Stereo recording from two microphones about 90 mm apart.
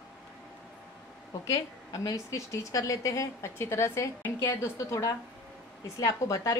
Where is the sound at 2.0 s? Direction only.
40° left (ahead or behind).